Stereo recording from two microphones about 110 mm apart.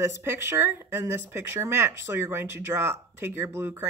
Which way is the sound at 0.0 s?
25° right (ahead or behind).